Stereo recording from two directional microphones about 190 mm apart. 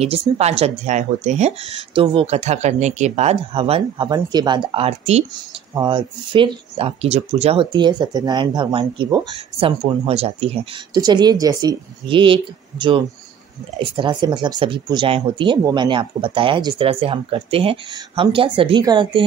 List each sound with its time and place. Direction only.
0.0 s speech: 35° right (ahead or behind)